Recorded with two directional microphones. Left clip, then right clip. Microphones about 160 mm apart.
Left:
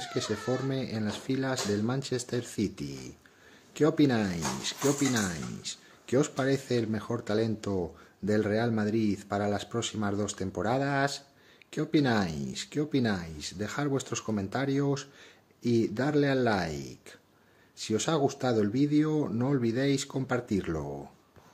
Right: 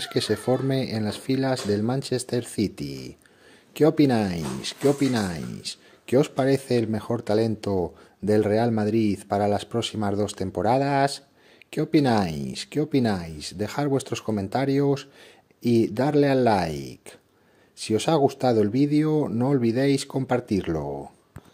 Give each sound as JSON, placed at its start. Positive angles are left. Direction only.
{"t": 0.0, "sound": "speech", "side_deg": -50}